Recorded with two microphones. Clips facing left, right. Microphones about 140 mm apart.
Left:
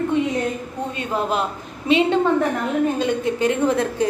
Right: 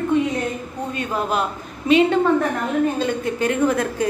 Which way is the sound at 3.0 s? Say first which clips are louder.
Left 1 dB; 20° left (ahead or behind).